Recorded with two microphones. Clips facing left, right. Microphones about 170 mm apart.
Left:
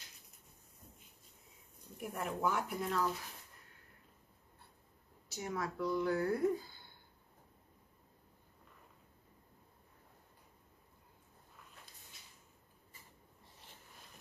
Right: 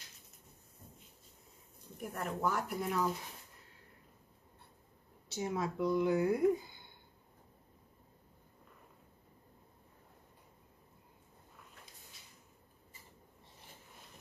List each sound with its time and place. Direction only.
2.0 s speech: 5° left (ahead or behind)
5.3 s speech: 25° right (ahead or behind)